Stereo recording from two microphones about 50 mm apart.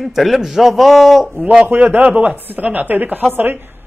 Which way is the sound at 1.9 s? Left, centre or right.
Right.